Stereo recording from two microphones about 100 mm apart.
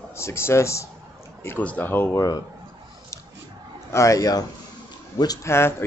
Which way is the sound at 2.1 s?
40° left (ahead or behind).